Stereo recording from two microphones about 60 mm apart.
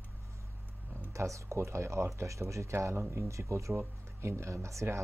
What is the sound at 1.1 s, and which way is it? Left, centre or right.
Speech, right.